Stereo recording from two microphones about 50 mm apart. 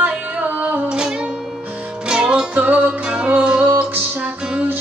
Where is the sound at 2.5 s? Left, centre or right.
Right.